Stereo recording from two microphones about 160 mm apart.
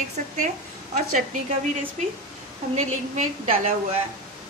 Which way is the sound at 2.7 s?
45° right (ahead or behind).